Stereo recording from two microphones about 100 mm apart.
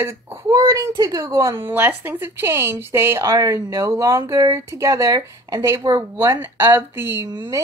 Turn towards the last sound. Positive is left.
turn(degrees=-25)  # may be behind; listen again after turning